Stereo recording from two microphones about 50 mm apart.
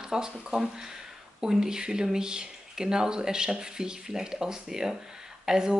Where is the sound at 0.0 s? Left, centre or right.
Centre.